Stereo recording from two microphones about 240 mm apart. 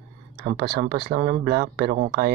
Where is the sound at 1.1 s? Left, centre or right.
Right.